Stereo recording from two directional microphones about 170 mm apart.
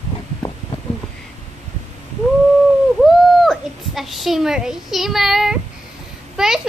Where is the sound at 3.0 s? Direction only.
Centre (ahead or behind).